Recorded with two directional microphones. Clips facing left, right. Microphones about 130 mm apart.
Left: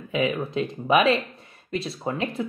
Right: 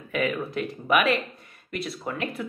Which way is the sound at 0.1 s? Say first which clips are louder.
Left 2 dB; 20° left (ahead or behind).